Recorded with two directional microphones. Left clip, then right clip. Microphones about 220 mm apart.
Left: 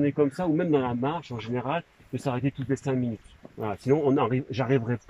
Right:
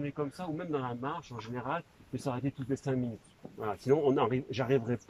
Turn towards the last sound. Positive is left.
turn(degrees=-5)  # may be behind; listen again after turning